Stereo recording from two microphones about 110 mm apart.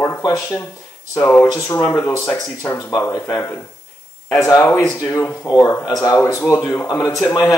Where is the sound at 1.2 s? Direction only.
20° left (ahead or behind).